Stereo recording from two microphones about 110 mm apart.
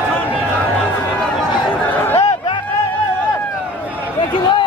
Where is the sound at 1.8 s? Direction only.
15° left (ahead or behind).